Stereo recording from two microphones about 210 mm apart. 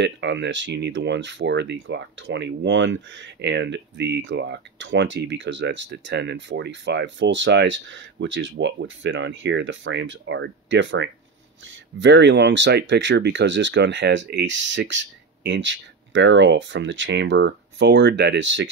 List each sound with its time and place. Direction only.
0.0 s speech: 60° right (ahead or behind)